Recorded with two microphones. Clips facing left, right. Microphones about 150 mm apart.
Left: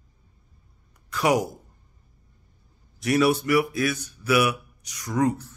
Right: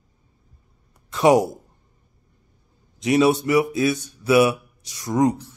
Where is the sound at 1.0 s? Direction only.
25° right (ahead or behind).